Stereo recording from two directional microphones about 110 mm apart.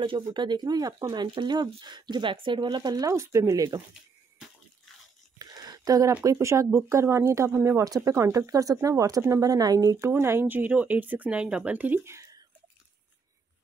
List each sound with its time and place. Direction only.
0.0 s speech: 50° right (ahead or behind); by 3.8 s 35° right (ahead or behind)
5.4 s a sound: 35° right (ahead or behind)
6.2 s speech: 25° right (ahead or behind)
9.8 s speech: 25° right (ahead or behind)